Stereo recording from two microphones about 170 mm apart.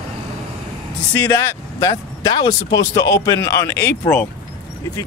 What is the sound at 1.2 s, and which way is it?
Speech, 15° left (ahead or behind).